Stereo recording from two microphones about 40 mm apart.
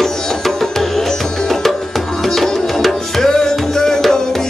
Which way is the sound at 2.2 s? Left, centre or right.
Centre.